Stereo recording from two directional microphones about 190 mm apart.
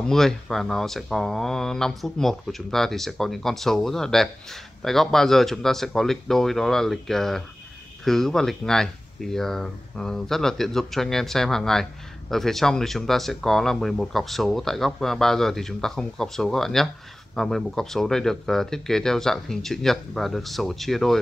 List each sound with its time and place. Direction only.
0.0 s speech: centre (ahead or behind)